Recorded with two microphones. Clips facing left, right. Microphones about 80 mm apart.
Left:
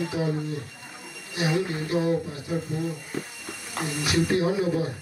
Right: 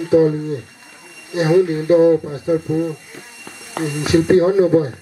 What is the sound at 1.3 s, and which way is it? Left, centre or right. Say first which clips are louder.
Speech: right 12 dB; right.